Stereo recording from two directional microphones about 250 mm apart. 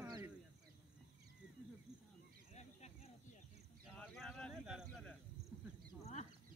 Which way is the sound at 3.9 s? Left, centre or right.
Centre.